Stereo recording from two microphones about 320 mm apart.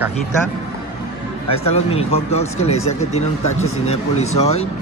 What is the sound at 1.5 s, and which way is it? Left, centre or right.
Speech, centre.